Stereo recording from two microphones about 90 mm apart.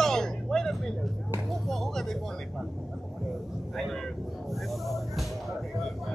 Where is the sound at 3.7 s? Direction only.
5° left (ahead or behind).